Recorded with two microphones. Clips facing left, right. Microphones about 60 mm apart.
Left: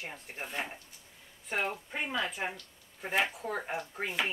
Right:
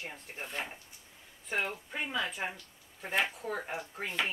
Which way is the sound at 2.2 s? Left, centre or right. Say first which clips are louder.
Left 1 dB; centre.